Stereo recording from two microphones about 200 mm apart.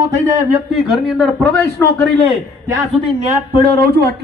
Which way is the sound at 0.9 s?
Centre (ahead or behind).